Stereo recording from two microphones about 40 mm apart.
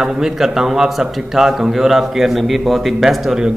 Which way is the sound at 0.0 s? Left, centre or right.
Centre.